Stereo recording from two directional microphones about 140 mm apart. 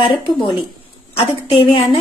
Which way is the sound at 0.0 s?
40° left (ahead or behind).